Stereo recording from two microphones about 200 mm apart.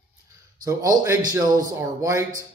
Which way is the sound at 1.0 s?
15° right (ahead or behind).